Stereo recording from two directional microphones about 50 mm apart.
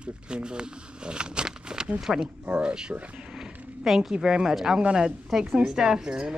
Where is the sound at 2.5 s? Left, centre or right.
Centre.